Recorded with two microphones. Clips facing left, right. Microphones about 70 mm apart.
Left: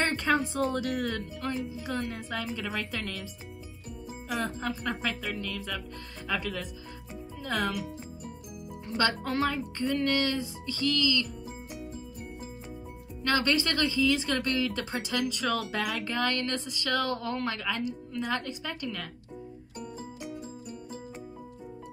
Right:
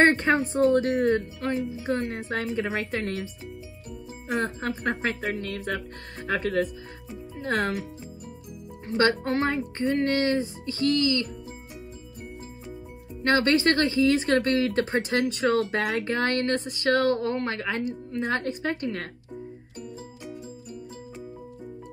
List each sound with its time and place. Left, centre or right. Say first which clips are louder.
0.0 s speech: right 7 dB; right
4.3 s speech: right 4 dB; right
8.8 s speech: right 6 dB; right
13.2 s speech: right 6 dB; right